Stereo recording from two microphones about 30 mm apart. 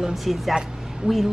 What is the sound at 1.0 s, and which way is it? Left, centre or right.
Speech, right.